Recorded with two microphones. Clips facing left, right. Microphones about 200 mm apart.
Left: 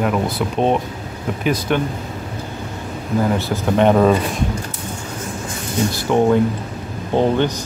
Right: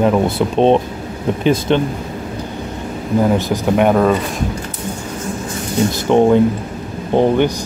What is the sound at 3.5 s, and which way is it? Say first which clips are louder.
Speech: right 1 dB; 10° right (ahead or behind).